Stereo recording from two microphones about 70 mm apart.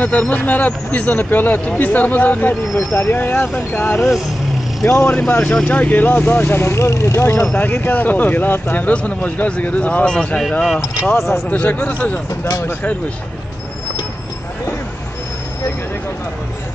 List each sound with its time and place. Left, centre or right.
0.0 s speech: left
2.7 s speech: left
5.4 s speech: centre; by 7.4 s left
7.4 s speech: left
11.1 s speech: left
11.5 s speech: left